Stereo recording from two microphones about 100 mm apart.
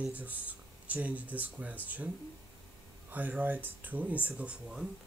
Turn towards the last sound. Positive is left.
turn(degrees=-10)  # may be behind; listen again after turning